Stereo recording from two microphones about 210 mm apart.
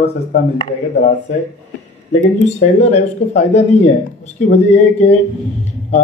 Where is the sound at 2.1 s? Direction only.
35° left (ahead or behind).